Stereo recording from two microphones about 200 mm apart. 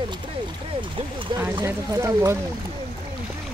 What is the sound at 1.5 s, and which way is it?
Speech, 15° right (ahead or behind).